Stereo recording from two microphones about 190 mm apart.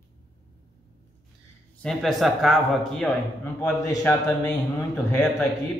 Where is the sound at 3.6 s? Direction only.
15° left (ahead or behind).